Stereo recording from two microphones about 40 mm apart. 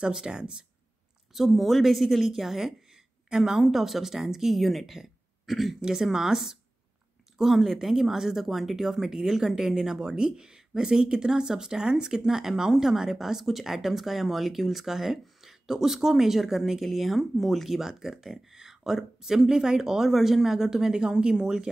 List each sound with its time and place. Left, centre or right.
0.0 s speech: centre
1.3 s speech: centre
5.8 s speech: centre